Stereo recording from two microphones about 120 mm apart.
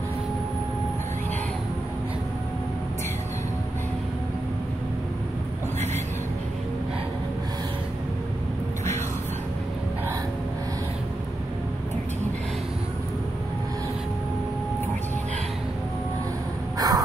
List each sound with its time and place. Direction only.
16.7 s crow: 30° right (ahead or behind)